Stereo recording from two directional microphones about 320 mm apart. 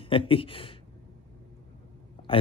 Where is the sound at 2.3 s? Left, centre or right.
Centre.